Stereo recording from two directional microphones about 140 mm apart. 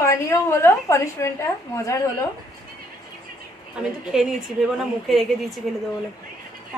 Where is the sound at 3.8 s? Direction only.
5° right (ahead or behind).